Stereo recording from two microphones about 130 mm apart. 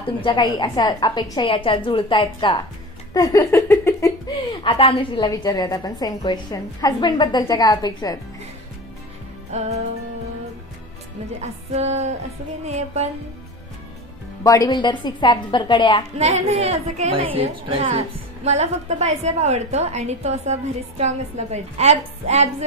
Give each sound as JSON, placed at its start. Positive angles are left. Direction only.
{"t": 0.0, "sound": "a woman's voice", "side_deg": 40}
{"t": 4.5, "sound": "a woman's voice", "side_deg": 40}
{"t": 5.2, "sound": "a woman's voice", "side_deg": 30}
{"t": 9.5, "sound": "a woman's voice", "side_deg": -60}
{"t": 11.4, "sound": "a woman's voice", "side_deg": -60}
{"t": 14.4, "sound": "a woman's voice", "side_deg": 25}
{"t": 16.2, "sound": "a woman's voice", "side_deg": -55}
{"t": 17.1, "sound": "a woman's voice", "side_deg": -45}
{"t": 18.4, "sound": "a woman's voice", "side_deg": -55}